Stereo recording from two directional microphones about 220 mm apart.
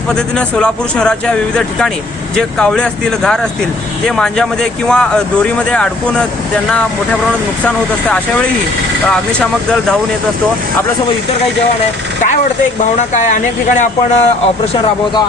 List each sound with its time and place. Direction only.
0.1 s speech: 5° left (ahead or behind)
2.3 s speech: 5° left (ahead or behind)
9.0 s speech: 5° left (ahead or behind)
13.1 s speech: 35° left (ahead or behind)